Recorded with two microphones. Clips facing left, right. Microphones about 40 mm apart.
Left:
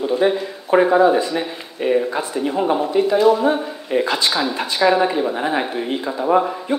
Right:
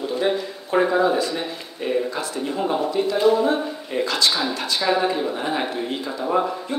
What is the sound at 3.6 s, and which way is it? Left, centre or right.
Speech, left.